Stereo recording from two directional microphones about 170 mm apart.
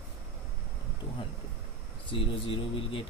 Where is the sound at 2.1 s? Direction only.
30° left (ahead or behind).